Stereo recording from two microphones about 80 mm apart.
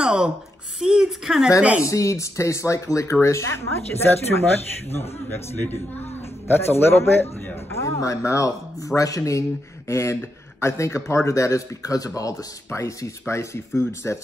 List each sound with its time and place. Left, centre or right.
0.0 s a sound: centre
0.7 s speech: centre
1.8 s a man's voice: left